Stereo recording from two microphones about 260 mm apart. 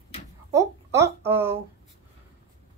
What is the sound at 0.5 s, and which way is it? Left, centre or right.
Speech, centre.